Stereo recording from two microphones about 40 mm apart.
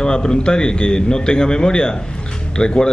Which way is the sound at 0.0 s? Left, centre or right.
Centre.